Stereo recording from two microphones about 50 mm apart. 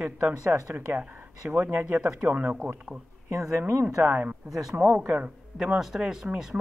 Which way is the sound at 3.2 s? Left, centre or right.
Right.